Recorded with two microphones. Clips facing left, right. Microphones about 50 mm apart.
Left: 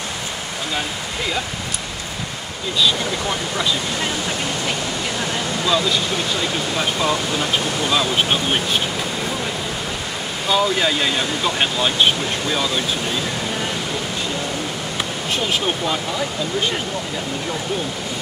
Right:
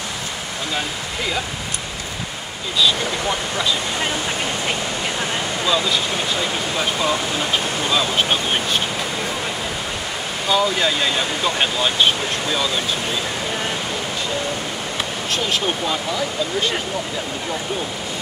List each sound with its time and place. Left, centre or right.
2.8 s speech: centre
5.6 s speech: centre
10.4 s speech: centre
15.3 s speech: centre